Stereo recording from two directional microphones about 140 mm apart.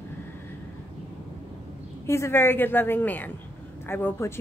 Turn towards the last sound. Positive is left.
turn(degrees=15)  # may be behind; listen again after turning